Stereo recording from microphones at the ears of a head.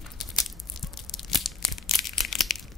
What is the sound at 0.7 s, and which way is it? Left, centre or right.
Tearing, left.